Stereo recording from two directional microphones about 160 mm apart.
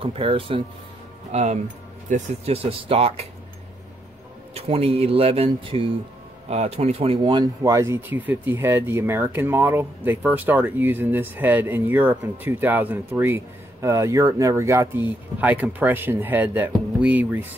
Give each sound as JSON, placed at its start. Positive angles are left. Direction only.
{"t": 0.0, "sound": "speech", "side_deg": -35}
{"t": 1.3, "sound": "speech", "side_deg": -45}
{"t": 4.6, "sound": "speech", "side_deg": -40}